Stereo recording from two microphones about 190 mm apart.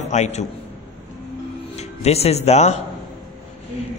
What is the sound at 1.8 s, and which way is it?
Speech, 35° left (ahead or behind).